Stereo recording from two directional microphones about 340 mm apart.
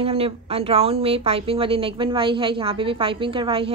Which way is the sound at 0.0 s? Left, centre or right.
Centre.